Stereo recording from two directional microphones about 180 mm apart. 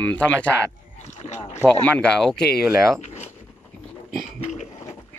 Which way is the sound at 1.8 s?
5° left (ahead or behind).